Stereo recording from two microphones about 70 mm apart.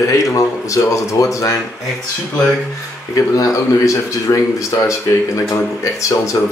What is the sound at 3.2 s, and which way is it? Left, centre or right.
Speech, left.